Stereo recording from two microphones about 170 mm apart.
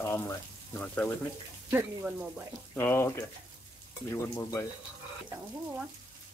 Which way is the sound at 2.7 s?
15° left (ahead or behind).